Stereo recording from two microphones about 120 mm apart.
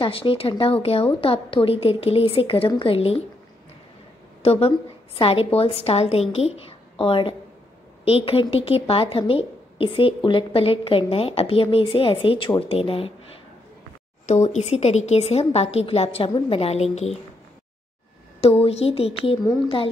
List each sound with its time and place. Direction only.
0.0 s a woman's voice: 50° left (ahead or behind)
4.4 s a woman's voice: 55° left (ahead or behind)
14.2 s a woman's voice: 75° left (ahead or behind)
18.4 s a woman's voice: 55° left (ahead or behind)